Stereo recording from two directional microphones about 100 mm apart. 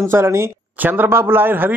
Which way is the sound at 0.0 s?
25° right (ahead or behind).